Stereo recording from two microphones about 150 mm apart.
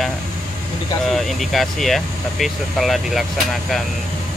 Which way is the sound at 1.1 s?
Centre (ahead or behind).